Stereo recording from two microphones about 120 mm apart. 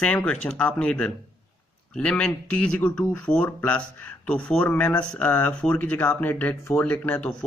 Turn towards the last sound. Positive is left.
turn(degrees=10)  # may be behind; listen again after turning